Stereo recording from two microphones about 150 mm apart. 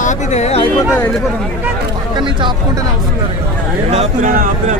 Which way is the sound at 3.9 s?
60° right (ahead or behind).